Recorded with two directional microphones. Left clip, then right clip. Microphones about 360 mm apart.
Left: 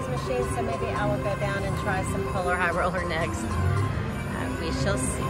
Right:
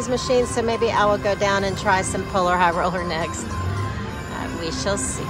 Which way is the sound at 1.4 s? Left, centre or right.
Centre.